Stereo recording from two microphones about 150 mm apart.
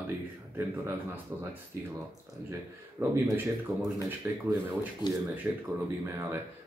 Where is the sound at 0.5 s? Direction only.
15° right (ahead or behind).